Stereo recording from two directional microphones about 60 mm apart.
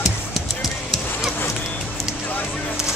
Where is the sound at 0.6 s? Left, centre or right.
Centre.